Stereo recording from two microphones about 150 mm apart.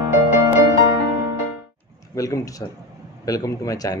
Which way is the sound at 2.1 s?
20° left (ahead or behind).